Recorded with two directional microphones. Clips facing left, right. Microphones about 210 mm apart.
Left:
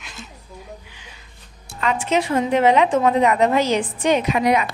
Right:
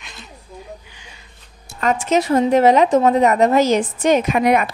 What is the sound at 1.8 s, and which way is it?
A woman's voice, 45° right (ahead or behind).